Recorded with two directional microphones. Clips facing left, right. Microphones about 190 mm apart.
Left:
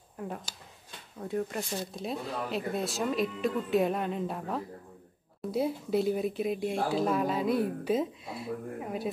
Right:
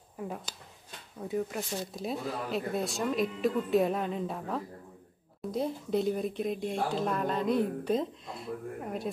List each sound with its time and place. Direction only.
1.2 s speech: centre (ahead or behind)